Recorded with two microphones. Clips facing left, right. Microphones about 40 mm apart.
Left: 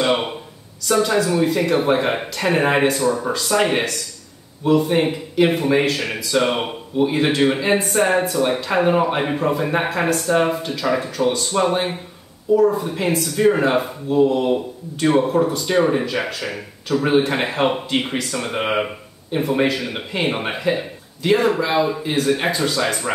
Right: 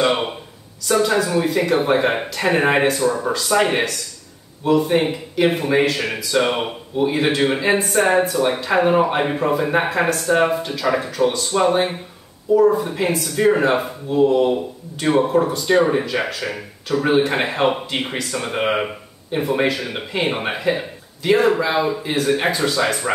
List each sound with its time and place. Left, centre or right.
0.8 s speech: centre